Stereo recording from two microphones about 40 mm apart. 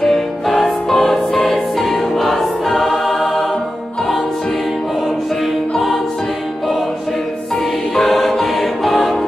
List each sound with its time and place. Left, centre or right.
0.0 s music: centre
7.9 s music: centre